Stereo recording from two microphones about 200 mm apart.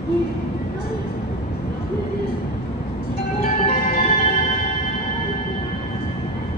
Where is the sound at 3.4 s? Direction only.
30° left (ahead or behind).